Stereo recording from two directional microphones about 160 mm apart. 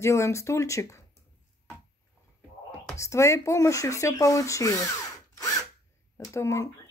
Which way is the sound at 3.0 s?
20° left (ahead or behind).